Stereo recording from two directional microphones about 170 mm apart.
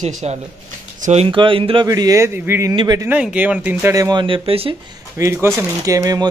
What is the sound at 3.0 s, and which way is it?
Speech, 10° right (ahead or behind).